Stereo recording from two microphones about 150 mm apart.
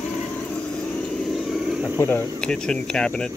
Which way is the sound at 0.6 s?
5° left (ahead or behind).